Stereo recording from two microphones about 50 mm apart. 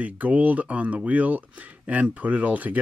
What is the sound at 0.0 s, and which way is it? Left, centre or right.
Speech, right.